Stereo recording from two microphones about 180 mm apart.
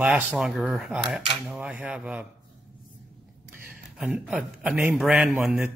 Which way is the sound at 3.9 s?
5° right (ahead or behind).